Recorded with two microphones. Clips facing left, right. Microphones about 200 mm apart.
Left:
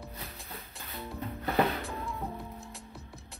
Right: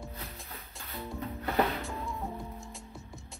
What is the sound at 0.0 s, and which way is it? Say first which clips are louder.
Music: right 1 dB; centre (ahead or behind).